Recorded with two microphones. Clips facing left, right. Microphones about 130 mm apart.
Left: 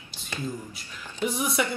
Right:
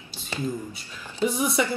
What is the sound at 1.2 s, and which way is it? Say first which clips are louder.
Speech: right 3 dB; centre (ahead or behind).